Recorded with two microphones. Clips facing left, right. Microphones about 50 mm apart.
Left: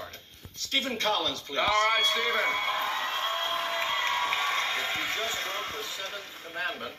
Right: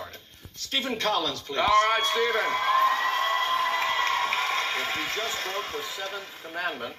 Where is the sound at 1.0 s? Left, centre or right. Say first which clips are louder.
Right 2 dB; right.